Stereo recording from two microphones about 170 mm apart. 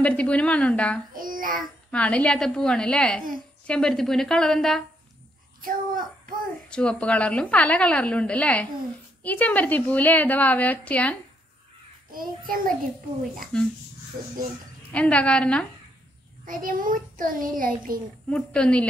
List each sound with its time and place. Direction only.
0.0 s a woman's voice: 5° left (ahead or behind)
1.1 s child singing: 55° right (ahead or behind)
1.6 s a woman's voice: 5° left (ahead or behind)
5.6 s child singing: 55° right (ahead or behind)
6.7 s a woman's voice: 5° left (ahead or behind)
12.1 s a child's voice: 55° right (ahead or behind)
13.4 s a woman's voice: 5° left (ahead or behind)
14.9 s a woman's voice: 10° left (ahead or behind)
16.4 s a child's voice: 55° right (ahead or behind)
18.3 s a woman's voice: 5° left (ahead or behind)